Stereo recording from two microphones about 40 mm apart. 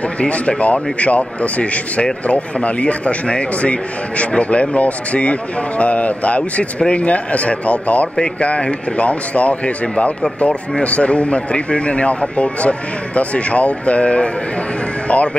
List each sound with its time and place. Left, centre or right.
0.2 s a man's voice: left